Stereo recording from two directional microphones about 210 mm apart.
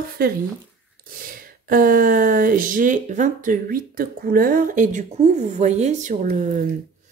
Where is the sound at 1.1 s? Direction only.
40° right (ahead or behind).